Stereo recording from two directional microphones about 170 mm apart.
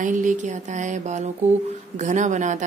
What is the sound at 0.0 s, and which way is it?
Speech, 50° right (ahead or behind).